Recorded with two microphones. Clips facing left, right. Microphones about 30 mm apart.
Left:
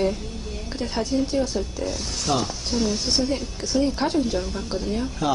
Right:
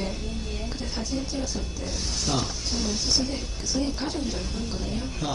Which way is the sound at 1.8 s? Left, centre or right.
Centre.